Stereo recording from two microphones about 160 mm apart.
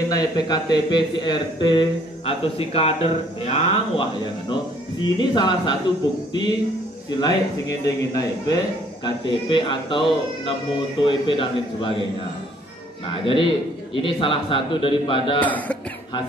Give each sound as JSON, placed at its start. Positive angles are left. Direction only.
{"t": 0.1, "sound": "a man's voice", "side_deg": 25}
{"t": 7.1, "sound": "a man's voice", "side_deg": 25}
{"t": 13.2, "sound": "speech", "side_deg": 30}
{"t": 15.4, "sound": "speech", "side_deg": 10}